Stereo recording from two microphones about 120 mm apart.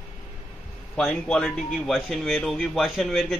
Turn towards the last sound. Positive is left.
turn(degrees=0)  # may be behind; listen again after turning